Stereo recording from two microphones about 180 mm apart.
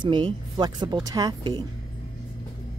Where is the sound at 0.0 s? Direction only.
25° right (ahead or behind).